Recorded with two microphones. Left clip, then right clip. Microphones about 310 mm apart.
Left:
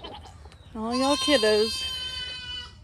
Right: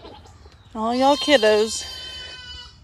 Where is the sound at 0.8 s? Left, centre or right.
Centre.